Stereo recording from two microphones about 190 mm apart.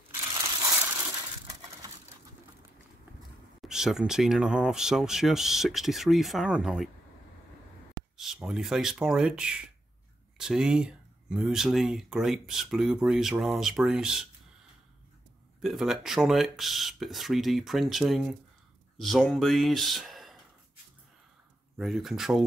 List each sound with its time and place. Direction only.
0.3 s crushing: 20° right (ahead or behind)
0.7 s coin: 15° right (ahead or behind)
3.6 s speech: centre (ahead or behind)
8.2 s speech: centre (ahead or behind)
15.6 s speech: centre (ahead or behind)
21.7 s speech: centre (ahead or behind)